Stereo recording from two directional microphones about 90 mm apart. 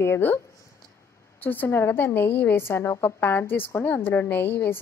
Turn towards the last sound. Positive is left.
turn(degrees=20)  # may be behind; listen again after turning